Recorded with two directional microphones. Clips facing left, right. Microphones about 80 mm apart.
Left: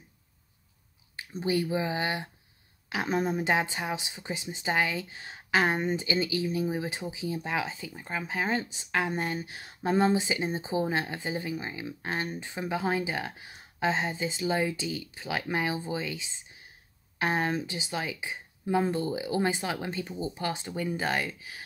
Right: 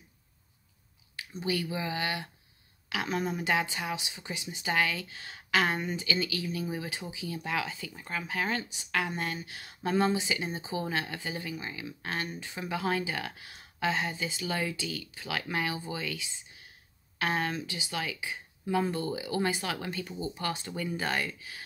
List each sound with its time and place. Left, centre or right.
1.4 s speech: left